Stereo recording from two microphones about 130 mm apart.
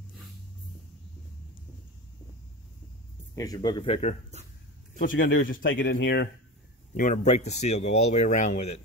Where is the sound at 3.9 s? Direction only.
60° left (ahead or behind).